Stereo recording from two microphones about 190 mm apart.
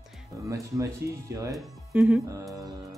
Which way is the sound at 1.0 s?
60° right (ahead or behind).